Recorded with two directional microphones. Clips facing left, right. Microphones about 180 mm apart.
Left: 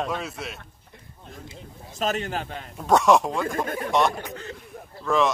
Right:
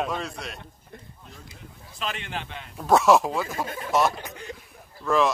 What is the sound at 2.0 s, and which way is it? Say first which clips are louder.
Speech: left 6 dB; 40° left (ahead or behind).